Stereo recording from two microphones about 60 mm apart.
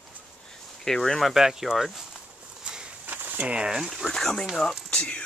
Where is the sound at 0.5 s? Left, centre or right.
Centre.